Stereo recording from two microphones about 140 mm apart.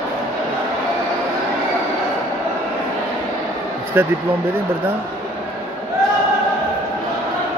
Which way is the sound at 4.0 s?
15° right (ahead or behind).